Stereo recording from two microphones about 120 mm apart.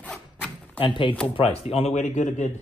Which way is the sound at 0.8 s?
45° left (ahead or behind).